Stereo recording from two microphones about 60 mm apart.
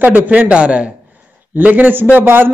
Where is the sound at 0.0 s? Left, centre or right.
Right.